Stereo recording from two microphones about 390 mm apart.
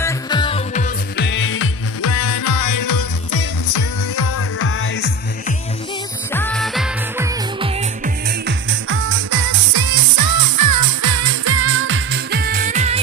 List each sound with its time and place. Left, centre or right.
0.0 s music: centre; by 3.8 s left
4.2 s music: left
6.3 s music: centre
8.5 s music: right
9.7 s music: right; by 13.0 s centre